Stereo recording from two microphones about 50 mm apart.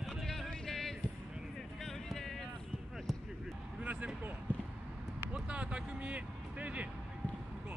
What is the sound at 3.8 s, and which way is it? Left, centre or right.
Vehicle, right.